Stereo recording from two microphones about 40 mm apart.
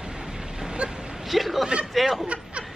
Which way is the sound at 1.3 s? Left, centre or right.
Centre.